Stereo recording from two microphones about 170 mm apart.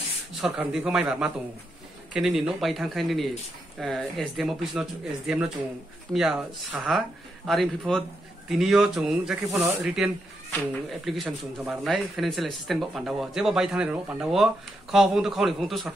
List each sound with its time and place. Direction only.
0.4 s speech: 5° right (ahead or behind)